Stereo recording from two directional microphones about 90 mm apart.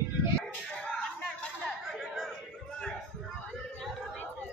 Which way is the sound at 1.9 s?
Centre (ahead or behind).